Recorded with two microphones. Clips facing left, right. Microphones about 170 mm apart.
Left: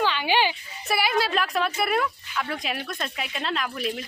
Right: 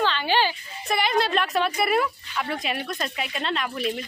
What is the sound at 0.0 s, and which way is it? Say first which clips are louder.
Speech: even; 10° left (ahead or behind).